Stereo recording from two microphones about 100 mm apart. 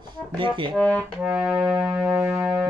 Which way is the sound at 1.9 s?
25° right (ahead or behind).